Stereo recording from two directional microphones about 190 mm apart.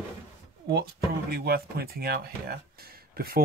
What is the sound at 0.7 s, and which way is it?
Speech, 55° right (ahead or behind).